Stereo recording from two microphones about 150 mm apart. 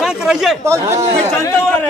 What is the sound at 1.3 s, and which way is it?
Speech, 20° left (ahead or behind).